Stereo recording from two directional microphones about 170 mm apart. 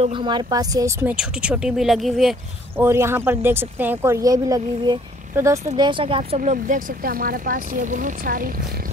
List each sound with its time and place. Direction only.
0.0 s speech: 30° right (ahead or behind)
1.0 s speech: 5° right (ahead or behind)
2.8 s speech: 15° right (ahead or behind)
5.8 s speech: 30° right (ahead or behind); by 8.5 s 50° right (ahead or behind)